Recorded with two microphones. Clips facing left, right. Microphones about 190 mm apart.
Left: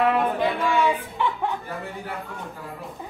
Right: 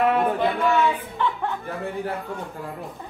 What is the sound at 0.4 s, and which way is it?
Music, 10° left (ahead or behind).